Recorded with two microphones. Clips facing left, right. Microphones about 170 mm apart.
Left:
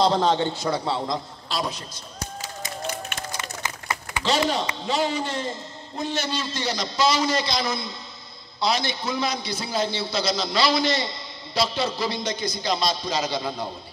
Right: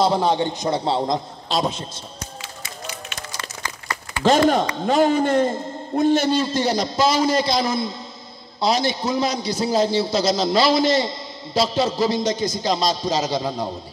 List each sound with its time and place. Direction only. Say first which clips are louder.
0.0 s a man's voice: right 2 dB; 10° right (ahead or behind)
2.6 s run: left 5 dB; 50° left (ahead or behind)
3.6 s a sound: even; 20° left (ahead or behind)
4.2 s a man's voice: right 8 dB; 50° right (ahead or behind)